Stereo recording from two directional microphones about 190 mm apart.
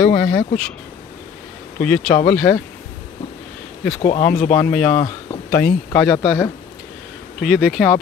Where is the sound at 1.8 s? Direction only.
10° left (ahead or behind).